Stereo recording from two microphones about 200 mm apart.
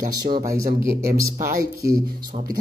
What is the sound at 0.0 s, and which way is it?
Speech, 40° right (ahead or behind).